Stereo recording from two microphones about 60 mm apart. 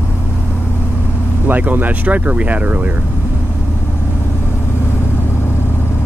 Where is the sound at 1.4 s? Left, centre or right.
Right.